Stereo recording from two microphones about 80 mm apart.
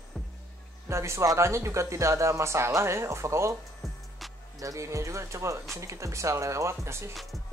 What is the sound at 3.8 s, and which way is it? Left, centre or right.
Music, centre.